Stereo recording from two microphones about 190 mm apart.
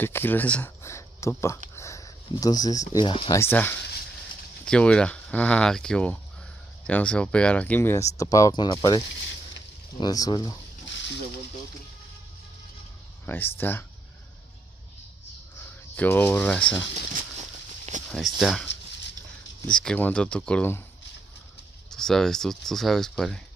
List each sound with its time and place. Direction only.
0.0 s speech: 10° left (ahead or behind)
3.3 s speech: 10° left (ahead or behind)
10.9 s a sound: 70° left (ahead or behind)
13.2 s speech: 10° left (ahead or behind)
16.0 s speech: 10° left (ahead or behind)
18.1 s speech: centre (ahead or behind)
19.7 s speech: 5° left (ahead or behind)
21.9 s speech: centre (ahead or behind)